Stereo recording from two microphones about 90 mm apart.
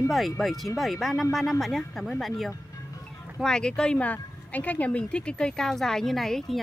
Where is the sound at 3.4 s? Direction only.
10° left (ahead or behind).